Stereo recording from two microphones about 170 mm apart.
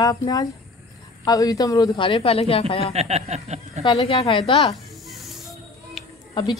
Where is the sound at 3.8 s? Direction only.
30° left (ahead or behind).